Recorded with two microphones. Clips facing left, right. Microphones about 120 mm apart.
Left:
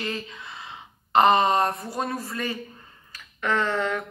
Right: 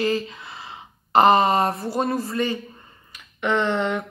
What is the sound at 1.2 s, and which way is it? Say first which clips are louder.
Speech: right 3 dB; centre (ahead or behind).